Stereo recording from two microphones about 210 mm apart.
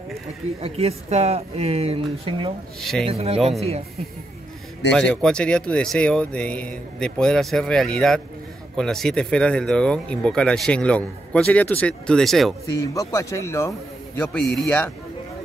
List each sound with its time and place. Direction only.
0.6 s speech: 30° right (ahead or behind)
2.8 s speech: centre (ahead or behind)
3.1 s speech: 30° right (ahead or behind)
4.9 s speech: 5° left (ahead or behind)
12.9 s a man's voice: 15° left (ahead or behind)